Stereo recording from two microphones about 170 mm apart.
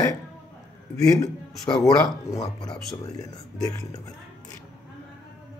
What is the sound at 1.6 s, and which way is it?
Speech, 20° left (ahead or behind).